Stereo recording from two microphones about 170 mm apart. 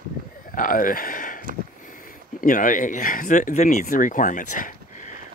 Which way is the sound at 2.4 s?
50° left (ahead or behind).